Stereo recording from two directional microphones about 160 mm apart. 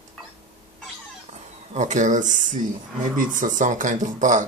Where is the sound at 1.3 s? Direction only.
50° right (ahead or behind).